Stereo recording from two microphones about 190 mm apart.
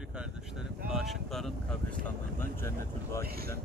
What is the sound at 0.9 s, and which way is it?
Wind noise, centre (ahead or behind).